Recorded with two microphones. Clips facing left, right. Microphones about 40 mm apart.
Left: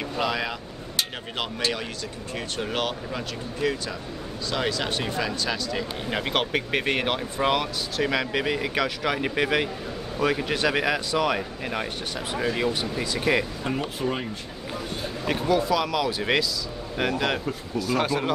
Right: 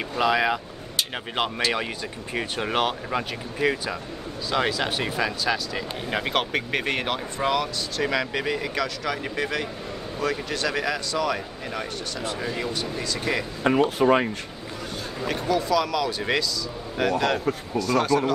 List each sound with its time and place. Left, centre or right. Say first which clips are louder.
0.2 s speech: right 6 dB; centre
2.3 s speech: right 4 dB; centre
3.1 s speech: right 3 dB; right
4.5 s speech: right 3 dB; centre
7.4 s speech: even; centre
13.7 s speech: right 8 dB; right
15.2 s speech: left 1 dB; centre